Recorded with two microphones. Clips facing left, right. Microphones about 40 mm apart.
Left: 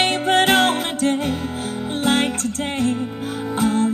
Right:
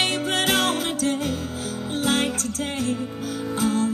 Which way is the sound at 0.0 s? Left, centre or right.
Left.